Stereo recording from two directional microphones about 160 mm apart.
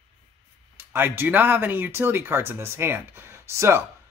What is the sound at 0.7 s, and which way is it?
Speech, 15° right (ahead or behind).